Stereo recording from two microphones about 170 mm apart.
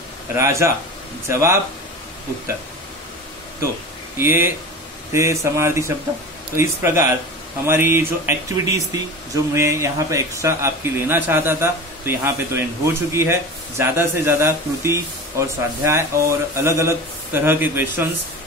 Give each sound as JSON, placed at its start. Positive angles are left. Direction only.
{"t": 0.4, "sound": "speech", "side_deg": -15}
{"t": 4.2, "sound": "speech", "side_deg": -15}